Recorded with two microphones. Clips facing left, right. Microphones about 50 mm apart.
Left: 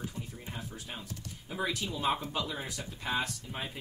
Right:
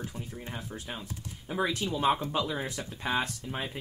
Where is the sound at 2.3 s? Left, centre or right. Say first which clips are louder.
Right 5 dB; right.